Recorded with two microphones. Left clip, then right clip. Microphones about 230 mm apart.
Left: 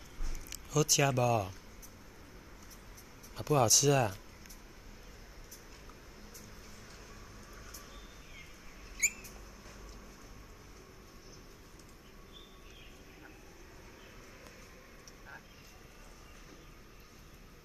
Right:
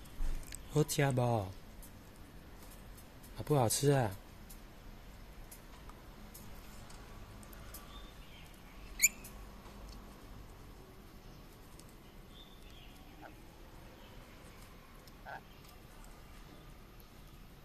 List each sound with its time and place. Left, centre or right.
0.5 s speech: centre
3.3 s speech: centre